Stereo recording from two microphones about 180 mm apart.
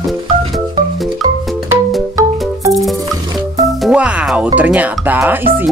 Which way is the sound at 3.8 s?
5° right (ahead or behind).